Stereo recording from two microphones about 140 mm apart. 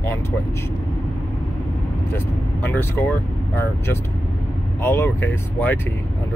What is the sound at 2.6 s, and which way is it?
Speech, 15° left (ahead or behind).